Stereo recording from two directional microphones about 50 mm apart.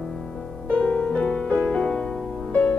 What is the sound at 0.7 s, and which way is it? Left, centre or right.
Music, left.